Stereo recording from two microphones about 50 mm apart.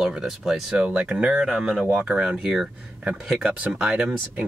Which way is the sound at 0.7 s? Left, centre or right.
Centre.